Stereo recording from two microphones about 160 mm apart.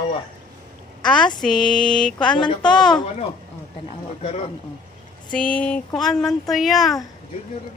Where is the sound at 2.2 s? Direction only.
30° left (ahead or behind).